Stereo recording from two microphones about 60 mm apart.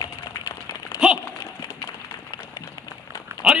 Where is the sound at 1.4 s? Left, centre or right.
Left.